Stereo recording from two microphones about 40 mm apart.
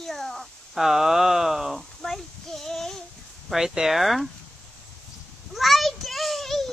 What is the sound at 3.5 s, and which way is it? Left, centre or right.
Speech, centre.